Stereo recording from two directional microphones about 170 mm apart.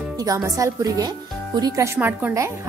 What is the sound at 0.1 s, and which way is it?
Speech, 20° right (ahead or behind).